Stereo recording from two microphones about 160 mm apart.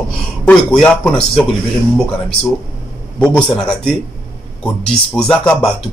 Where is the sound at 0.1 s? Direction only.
5° left (ahead or behind).